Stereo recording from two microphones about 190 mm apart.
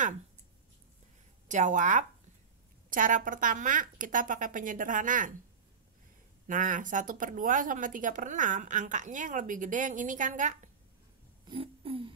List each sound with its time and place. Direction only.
1.5 s speech: 40° right (ahead or behind)
6.4 s speech: 45° right (ahead or behind)
11.4 s a sound: 30° right (ahead or behind)